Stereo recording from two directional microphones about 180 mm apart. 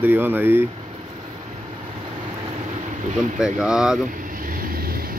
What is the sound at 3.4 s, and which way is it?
Speech, 5° right (ahead or behind).